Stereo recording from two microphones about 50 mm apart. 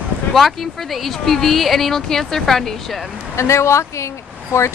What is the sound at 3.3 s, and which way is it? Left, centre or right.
Speech, left.